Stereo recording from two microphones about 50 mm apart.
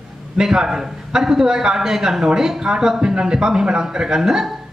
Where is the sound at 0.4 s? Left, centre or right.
Centre.